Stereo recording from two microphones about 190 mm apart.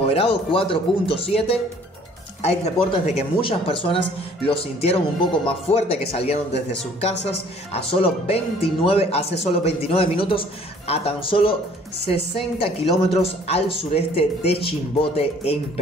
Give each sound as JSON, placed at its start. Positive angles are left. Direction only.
{"t": 0.0, "sound": "speech", "side_deg": 30}
{"t": 5.4, "sound": "speech", "side_deg": 30}